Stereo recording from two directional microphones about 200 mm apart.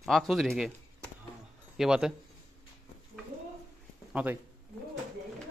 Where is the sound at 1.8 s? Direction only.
5° right (ahead or behind).